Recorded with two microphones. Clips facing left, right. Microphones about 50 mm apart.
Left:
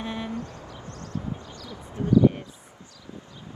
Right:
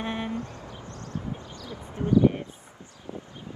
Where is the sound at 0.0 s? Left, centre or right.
Right.